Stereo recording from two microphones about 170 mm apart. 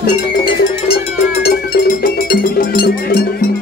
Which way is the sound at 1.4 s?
65° left (ahead or behind).